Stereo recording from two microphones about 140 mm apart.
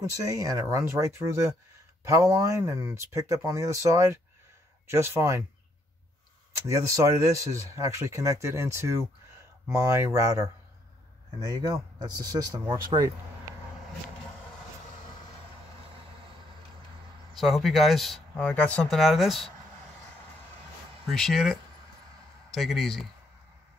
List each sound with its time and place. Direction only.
0.1 s speech: 25° right (ahead or behind)
6.5 s speech: 20° right (ahead or behind)
17.3 s speech: centre (ahead or behind)
21.1 s speech: centre (ahead or behind)